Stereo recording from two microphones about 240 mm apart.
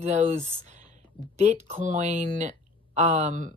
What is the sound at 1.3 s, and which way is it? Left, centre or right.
Speech, right.